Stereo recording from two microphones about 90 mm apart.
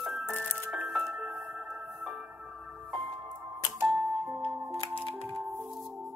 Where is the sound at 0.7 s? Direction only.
5° right (ahead or behind).